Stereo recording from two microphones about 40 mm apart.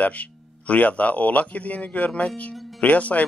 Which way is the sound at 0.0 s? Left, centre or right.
Left.